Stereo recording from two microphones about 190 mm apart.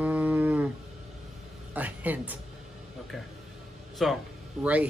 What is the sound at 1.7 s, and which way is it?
Cattle, 10° right (ahead or behind).